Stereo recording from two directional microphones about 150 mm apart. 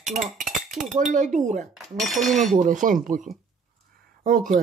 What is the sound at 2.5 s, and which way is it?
Speech, 60° right (ahead or behind).